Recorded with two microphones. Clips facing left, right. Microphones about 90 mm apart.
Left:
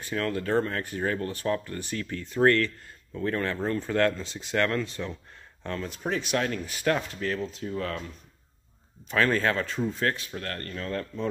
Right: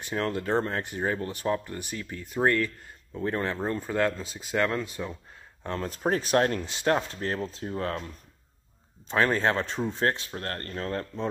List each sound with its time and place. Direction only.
0.0 s speech: 25° right (ahead or behind)
5.8 s speech: 45° right (ahead or behind)
6.6 s speech: 25° right (ahead or behind)
9.1 s speech: 25° right (ahead or behind)